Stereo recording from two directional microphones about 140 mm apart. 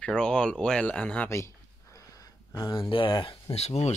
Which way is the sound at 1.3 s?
20° left (ahead or behind).